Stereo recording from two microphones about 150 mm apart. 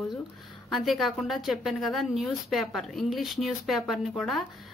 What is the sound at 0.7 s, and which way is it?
Speech, centre (ahead or behind).